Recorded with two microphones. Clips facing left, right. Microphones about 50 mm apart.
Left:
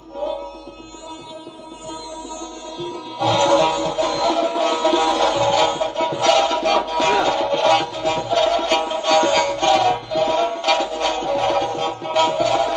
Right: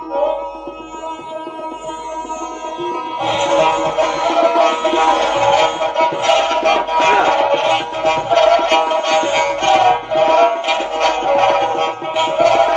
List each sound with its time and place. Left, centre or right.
0.1 s music: right
2.8 s music: right
3.3 s music: right
4.6 s music: right
6.1 s music: right
7.6 s music: right
8.0 s music: right
9.1 s music: right
10.6 s music: right
10.9 s music: right
12.1 s music: right
12.4 s music: right